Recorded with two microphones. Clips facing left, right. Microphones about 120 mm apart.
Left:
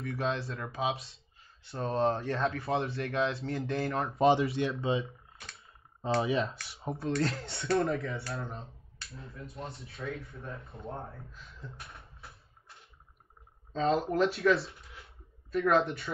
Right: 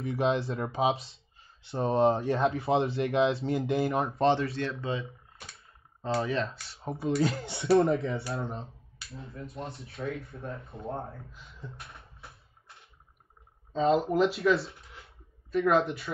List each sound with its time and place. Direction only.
0.0 s speech: 25° right (ahead or behind)
4.1 s speech: 10° left (ahead or behind)
6.2 s speech: 10° left (ahead or behind)
7.7 s speech: 25° right (ahead or behind)
11.5 s music: centre (ahead or behind)
13.7 s speech: 5° right (ahead or behind)